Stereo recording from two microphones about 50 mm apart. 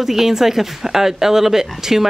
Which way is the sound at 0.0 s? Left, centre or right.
Centre.